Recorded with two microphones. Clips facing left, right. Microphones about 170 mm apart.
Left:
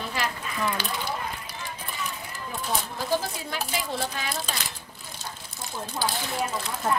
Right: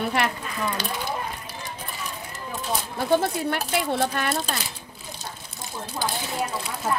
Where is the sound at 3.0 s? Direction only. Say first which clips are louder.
Right 10 dB; 65° right (ahead or behind).